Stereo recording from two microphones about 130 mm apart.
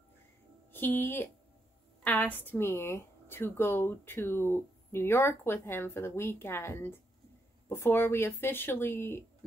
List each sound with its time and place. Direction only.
0.7 s a woman's voice: 15° left (ahead or behind)